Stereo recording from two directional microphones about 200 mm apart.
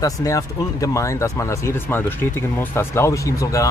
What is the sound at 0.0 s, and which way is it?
Speech, 15° left (ahead or behind).